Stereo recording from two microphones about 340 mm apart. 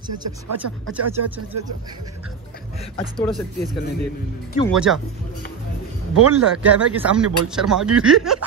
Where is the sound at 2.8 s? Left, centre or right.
Centre.